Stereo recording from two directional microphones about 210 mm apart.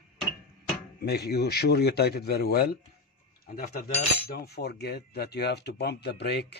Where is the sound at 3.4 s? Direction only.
40° left (ahead or behind).